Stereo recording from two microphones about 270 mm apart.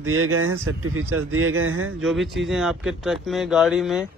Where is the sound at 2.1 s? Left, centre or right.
Centre.